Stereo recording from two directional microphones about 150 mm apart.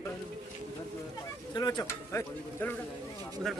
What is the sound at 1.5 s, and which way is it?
Speech, 30° left (ahead or behind).